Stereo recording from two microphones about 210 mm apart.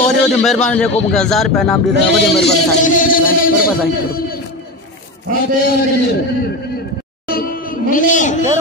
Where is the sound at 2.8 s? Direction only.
40° left (ahead or behind).